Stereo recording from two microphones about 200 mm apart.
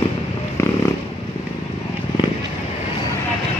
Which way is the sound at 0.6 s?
15° left (ahead or behind).